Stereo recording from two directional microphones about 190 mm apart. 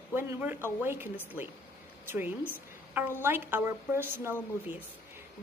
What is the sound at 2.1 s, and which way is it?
A woman's voice, 10° right (ahead or behind).